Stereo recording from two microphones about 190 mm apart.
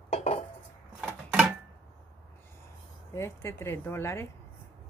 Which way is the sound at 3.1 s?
15° left (ahead or behind).